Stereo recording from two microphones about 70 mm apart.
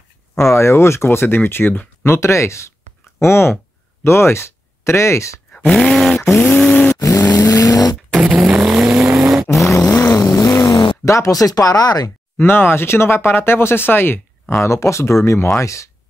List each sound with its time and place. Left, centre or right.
0.6 s speech: left
2.0 s speech: left
5.7 s a sound: centre
6.4 s a sound: centre
7.0 s vehicle: left
8.4 s vehicle: centre
10.1 s vehicle: left
11.1 s speech: left
12.4 s speech: left
14.6 s speech: left